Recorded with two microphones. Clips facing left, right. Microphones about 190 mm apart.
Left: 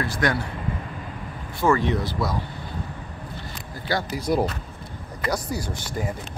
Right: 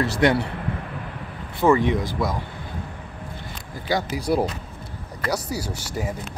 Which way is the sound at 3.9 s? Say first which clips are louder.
Right 1 dB; 10° right (ahead or behind).